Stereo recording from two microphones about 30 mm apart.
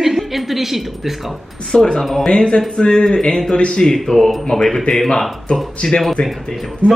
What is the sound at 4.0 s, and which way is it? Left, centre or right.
Speech, centre.